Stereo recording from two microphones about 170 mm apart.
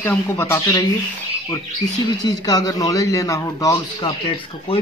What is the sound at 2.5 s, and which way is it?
A man's voice, 20° left (ahead or behind).